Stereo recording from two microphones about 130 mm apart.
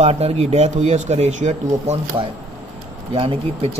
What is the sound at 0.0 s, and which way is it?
Speech, 55° right (ahead or behind).